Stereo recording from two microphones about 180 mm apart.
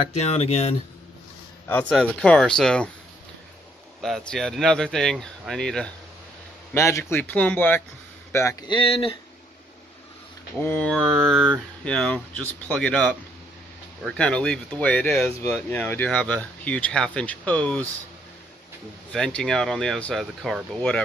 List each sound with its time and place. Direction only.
0.0 s speech: 35° left (ahead or behind)
1.7 s speech: 5° left (ahead or behind)
4.0 s speech: 5° left (ahead or behind)
6.7 s speech: 15° left (ahead or behind)
8.7 s speech: 30° left (ahead or behind)
10.6 s speech: 10° left (ahead or behind)
19.1 s speech: 5° left (ahead or behind)